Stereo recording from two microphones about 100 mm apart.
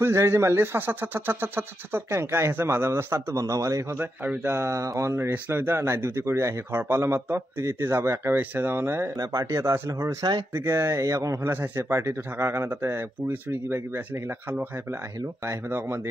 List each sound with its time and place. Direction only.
0.0 s speech: 25° right (ahead or behind)
4.0 s speech: 15° right (ahead or behind)
4.5 s speech: 30° right (ahead or behind)
5.1 s speech: 25° right (ahead or behind)
15.4 s speech: 25° right (ahead or behind)